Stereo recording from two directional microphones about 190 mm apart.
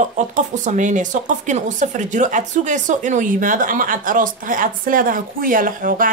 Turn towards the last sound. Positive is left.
turn(degrees=-45)  # may be behind; listen again after turning